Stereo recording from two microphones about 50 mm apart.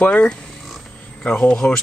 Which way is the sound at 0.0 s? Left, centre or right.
Left.